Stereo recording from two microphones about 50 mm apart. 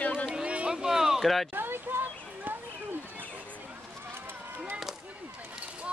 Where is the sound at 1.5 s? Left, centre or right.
Right.